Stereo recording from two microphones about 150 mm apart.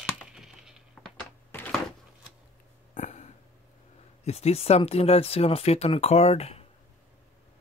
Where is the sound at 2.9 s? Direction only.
55° left (ahead or behind).